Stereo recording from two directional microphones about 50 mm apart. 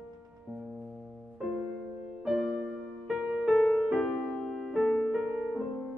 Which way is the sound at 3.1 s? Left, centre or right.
Centre.